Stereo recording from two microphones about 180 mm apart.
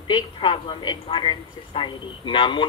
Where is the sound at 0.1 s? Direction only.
25° left (ahead or behind).